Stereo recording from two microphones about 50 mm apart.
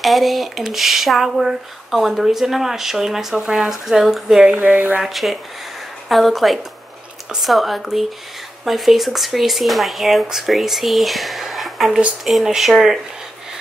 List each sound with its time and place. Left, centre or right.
0.0 s speech: centre
4.6 s speech: right
5.0 s speech: centre